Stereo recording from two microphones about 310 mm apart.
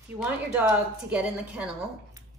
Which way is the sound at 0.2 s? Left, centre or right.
Centre.